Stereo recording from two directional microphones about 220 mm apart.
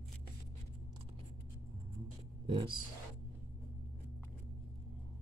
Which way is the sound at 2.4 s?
25° right (ahead or behind).